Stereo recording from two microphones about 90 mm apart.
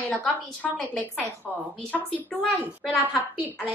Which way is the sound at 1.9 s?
15° left (ahead or behind).